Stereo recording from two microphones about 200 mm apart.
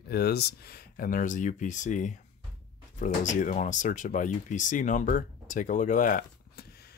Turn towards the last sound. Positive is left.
turn(degrees=45)  # may be behind; listen again after turning